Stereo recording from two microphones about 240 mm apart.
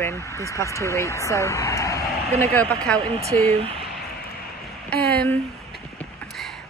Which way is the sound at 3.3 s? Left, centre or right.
Right.